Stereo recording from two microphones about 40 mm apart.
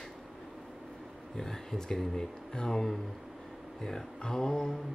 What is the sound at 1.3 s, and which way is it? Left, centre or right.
Speech, centre.